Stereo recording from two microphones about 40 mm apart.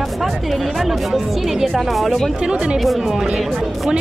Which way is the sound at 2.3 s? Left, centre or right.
Right.